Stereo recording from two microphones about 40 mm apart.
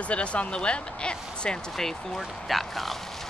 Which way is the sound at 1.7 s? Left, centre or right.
Centre.